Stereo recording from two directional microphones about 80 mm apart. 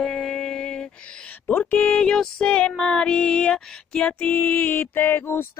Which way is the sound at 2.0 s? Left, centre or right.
Centre.